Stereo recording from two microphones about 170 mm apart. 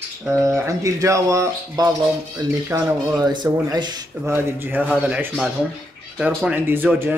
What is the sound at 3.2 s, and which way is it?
Speech, 25° right (ahead or behind).